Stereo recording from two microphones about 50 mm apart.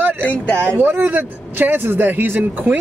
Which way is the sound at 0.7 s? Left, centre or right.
Right.